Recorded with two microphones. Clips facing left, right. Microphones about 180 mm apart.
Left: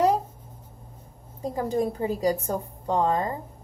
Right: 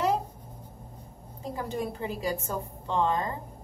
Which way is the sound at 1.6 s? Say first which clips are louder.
Left 7 dB; 35° left (ahead or behind).